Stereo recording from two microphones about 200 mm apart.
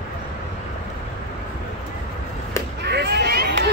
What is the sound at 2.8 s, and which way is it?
Cat, 55° right (ahead or behind).